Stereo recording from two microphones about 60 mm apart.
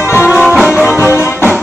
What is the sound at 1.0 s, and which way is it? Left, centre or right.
Music, left.